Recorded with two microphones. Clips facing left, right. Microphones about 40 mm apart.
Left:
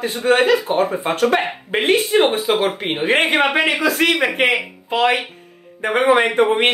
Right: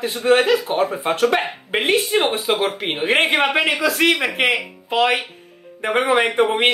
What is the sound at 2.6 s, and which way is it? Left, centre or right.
Speech, centre.